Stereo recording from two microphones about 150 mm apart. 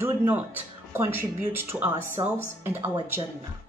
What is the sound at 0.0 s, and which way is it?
Speech, 15° right (ahead or behind).